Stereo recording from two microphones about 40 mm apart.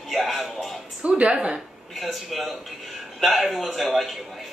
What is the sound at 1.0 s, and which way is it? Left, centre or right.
Speech, right.